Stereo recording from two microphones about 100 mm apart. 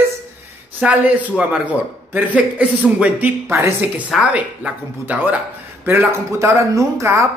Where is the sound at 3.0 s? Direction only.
15° right (ahead or behind).